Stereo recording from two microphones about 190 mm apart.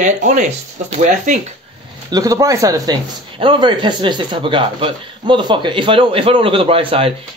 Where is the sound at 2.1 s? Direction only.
20° right (ahead or behind).